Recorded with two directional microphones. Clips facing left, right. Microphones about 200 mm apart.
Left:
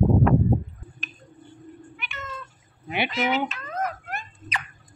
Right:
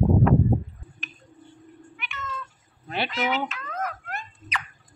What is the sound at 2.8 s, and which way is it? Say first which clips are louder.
Speech: left 2 dB; 15° left (ahead or behind).